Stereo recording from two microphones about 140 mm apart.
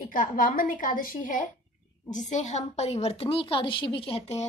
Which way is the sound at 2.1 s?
60° left (ahead or behind).